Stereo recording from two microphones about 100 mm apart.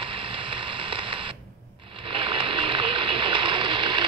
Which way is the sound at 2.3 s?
55° right (ahead or behind).